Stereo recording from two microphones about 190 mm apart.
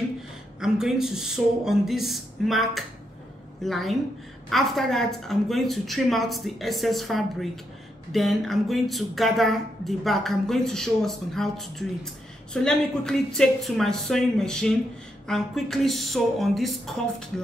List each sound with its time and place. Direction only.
0.6 s speech: 5° right (ahead or behind)